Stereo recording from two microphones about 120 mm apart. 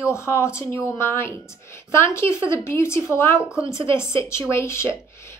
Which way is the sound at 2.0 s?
25° left (ahead or behind).